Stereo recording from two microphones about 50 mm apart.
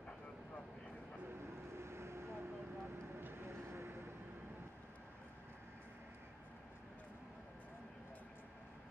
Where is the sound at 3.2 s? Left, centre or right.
Right.